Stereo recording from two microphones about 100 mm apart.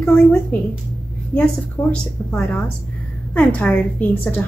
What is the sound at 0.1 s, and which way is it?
A woman's voice, 20° left (ahead or behind).